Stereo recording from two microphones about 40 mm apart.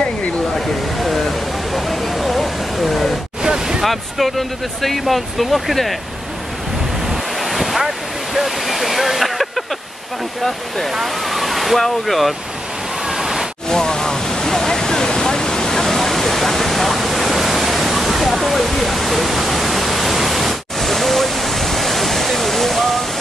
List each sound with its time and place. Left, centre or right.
0.6 s a sound: centre
3.4 s waves: centre
3.8 s speech: centre
7.1 s waves: centre
8.4 s waterfall: centre
11.0 s speech: centre
13.1 s waterfall: centre
13.7 s waves: centre